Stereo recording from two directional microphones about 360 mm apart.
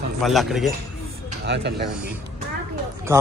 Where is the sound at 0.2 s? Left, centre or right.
Centre.